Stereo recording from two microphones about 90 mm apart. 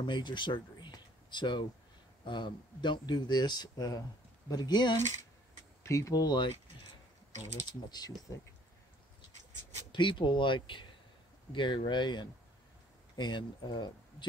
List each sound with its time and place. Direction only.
0.0 s speech: 60° left (ahead or behind)
5.9 s speech: 35° left (ahead or behind)
6.2 s speech: 55° left (ahead or behind)
7.9 s speech: 45° left (ahead or behind)
9.9 s speech: 65° left (ahead or behind)